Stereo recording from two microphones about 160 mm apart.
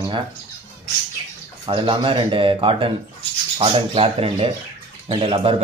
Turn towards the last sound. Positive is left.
turn(degrees=-35)  # may be behind; listen again after turning